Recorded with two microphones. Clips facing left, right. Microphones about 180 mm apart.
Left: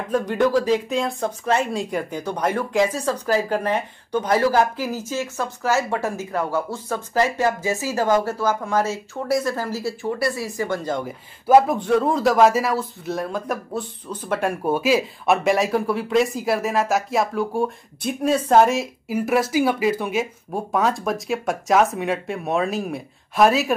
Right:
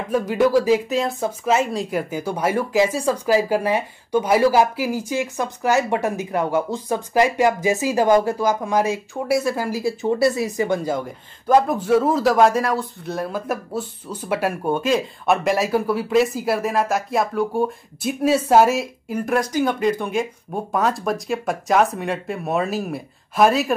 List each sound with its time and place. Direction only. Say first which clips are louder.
0.1 s speech: right 2 dB; 5° right (ahead or behind)
10.0 s speech: right 6 dB; 25° right (ahead or behind)
11.1 s speech: left 5 dB; 5° left (ahead or behind)
14.6 s speech: left 1 dB; 5° left (ahead or behind)